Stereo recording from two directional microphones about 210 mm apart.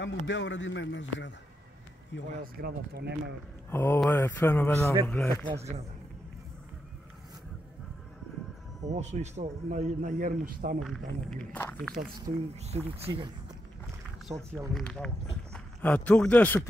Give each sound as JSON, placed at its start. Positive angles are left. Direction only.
{"t": 0.0, "sound": "a man's voice", "side_deg": 60}
{"t": 2.4, "sound": "speech", "side_deg": -50}
{"t": 3.7, "sound": "mantra", "side_deg": 10}
{"t": 5.5, "sound": "speech", "side_deg": -30}
{"t": 8.8, "sound": "a man's voice", "side_deg": -35}
{"t": 10.8, "sound": "speech", "side_deg": 0}
{"t": 12.5, "sound": "speech", "side_deg": -30}
{"t": 14.3, "sound": "speech", "side_deg": -15}
{"t": 14.7, "sound": "speech", "side_deg": 5}